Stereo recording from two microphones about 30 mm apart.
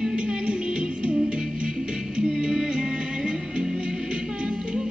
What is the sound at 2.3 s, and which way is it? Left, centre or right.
Music, right.